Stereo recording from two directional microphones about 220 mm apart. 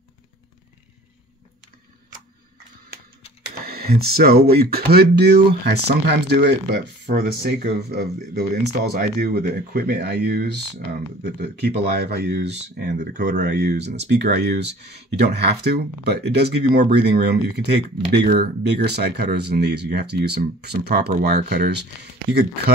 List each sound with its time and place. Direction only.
3.6 s speech: 45° right (ahead or behind)